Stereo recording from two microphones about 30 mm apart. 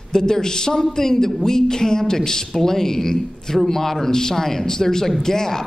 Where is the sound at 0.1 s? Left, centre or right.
Left.